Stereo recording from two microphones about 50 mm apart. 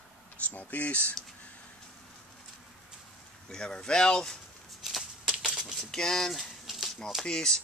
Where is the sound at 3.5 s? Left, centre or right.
Centre.